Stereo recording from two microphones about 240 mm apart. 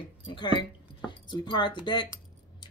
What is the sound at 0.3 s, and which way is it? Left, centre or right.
Speech, centre.